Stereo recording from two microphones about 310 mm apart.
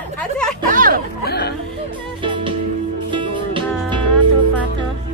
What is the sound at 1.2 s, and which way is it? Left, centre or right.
Speech, left.